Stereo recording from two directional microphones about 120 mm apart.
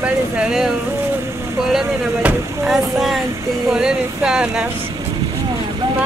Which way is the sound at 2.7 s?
Centre (ahead or behind).